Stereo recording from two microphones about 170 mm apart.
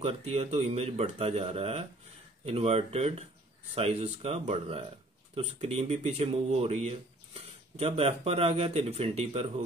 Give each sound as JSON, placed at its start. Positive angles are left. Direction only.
{"t": 0.0, "sound": "speech", "side_deg": -35}